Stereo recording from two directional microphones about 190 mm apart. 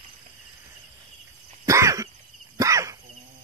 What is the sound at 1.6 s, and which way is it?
Cough, 15° right (ahead or behind).